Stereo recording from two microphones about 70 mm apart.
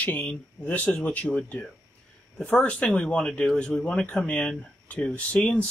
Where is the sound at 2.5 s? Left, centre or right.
Centre.